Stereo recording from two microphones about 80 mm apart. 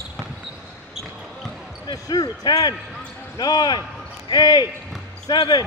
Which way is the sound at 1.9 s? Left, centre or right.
Left.